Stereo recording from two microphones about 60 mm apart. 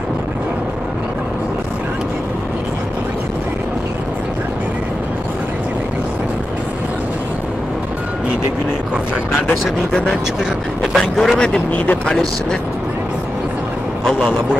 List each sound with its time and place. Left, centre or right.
11.3 s speech: centre